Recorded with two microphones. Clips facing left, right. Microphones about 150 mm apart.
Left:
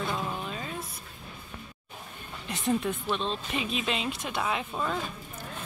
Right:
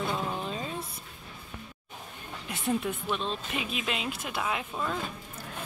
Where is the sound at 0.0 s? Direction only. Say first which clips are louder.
Right 1 dB; 20° right (ahead or behind).